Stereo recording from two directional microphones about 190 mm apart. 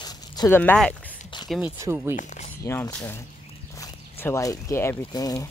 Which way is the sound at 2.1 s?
40° left (ahead or behind).